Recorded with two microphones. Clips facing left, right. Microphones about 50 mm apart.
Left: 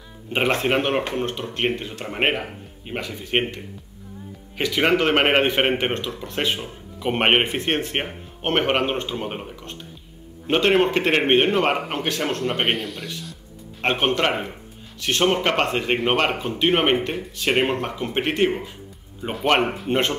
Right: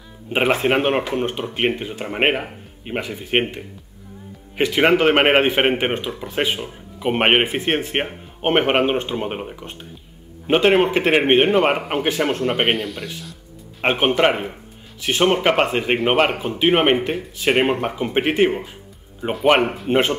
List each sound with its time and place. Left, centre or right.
0.3 s speech: centre
12.5 s speech: centre
13.7 s speech: centre
19.6 s speech: centre